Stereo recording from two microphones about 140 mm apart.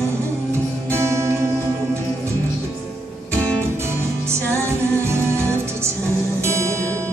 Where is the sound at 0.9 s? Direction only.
20° right (ahead or behind).